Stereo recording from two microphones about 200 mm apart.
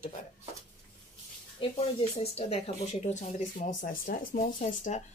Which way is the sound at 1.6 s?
25° left (ahead or behind).